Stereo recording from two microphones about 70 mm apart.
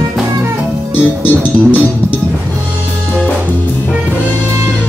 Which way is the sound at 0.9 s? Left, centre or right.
Left.